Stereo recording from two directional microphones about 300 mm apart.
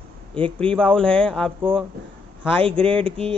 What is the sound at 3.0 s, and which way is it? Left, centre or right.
Speech, centre.